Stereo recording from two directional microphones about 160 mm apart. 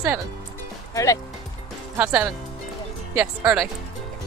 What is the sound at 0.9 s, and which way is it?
Speech, 20° left (ahead or behind).